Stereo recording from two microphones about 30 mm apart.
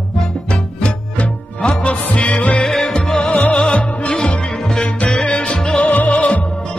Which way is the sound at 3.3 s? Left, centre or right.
Left.